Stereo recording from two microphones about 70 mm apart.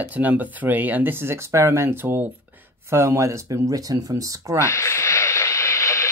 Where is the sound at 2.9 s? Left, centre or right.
Right.